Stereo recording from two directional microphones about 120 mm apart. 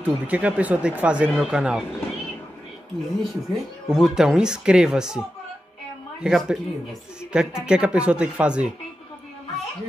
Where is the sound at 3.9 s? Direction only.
5° right (ahead or behind).